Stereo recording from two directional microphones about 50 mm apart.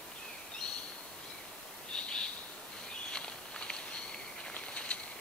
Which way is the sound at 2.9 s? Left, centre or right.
Centre.